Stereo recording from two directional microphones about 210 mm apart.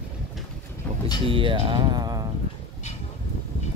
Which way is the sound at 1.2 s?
25° right (ahead or behind).